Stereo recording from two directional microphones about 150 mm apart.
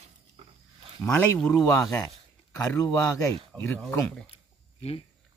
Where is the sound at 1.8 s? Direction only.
20° left (ahead or behind).